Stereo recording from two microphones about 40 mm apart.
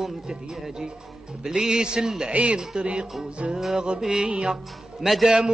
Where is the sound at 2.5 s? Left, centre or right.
Right.